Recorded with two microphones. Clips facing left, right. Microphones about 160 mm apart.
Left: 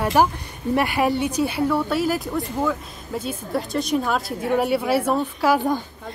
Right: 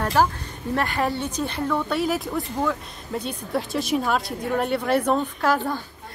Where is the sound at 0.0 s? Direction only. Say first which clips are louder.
Left 2 dB; 15° left (ahead or behind).